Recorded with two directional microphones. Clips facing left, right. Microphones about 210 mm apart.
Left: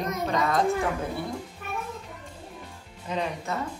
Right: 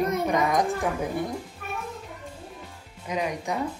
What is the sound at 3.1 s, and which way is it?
Speech, 10° right (ahead or behind).